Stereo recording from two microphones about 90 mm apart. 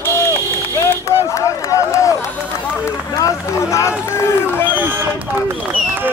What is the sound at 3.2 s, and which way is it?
Speech, 35° left (ahead or behind).